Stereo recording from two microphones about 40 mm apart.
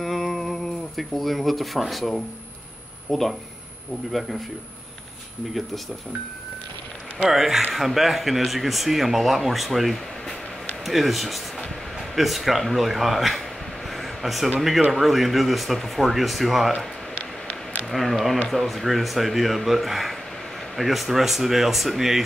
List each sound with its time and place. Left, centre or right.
0.0 s a sound: centre
3.1 s speech: centre
7.2 s speech: centre
13.8 s air conditioning: centre
14.9 s speech: centre
17.8 s speech: centre